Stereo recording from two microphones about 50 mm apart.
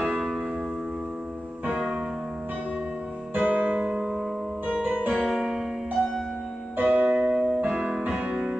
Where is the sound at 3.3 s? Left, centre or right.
Right.